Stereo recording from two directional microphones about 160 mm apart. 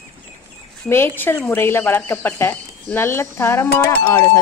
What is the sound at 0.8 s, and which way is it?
A woman's voice, 15° left (ahead or behind).